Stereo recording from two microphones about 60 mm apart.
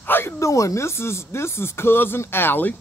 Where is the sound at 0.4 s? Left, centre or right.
Left.